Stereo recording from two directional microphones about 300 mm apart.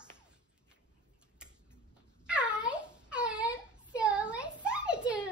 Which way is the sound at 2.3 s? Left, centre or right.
Centre.